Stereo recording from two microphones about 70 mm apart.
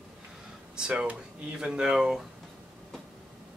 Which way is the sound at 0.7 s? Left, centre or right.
Centre.